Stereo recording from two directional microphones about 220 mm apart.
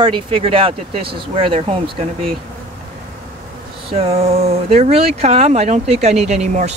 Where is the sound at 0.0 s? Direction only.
20° right (ahead or behind).